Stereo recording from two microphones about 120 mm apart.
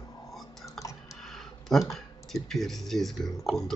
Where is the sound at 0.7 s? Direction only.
25° left (ahead or behind).